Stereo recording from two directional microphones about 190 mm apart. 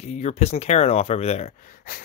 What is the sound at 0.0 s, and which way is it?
Speech, 35° left (ahead or behind).